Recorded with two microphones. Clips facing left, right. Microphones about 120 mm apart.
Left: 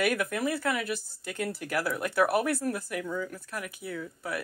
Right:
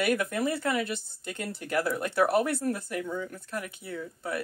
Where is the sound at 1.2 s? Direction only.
5° left (ahead or behind).